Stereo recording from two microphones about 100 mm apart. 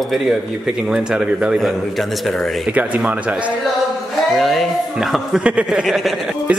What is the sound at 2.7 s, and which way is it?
Speech, 15° right (ahead or behind).